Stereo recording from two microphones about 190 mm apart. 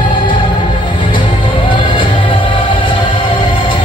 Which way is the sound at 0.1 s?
25° left (ahead or behind).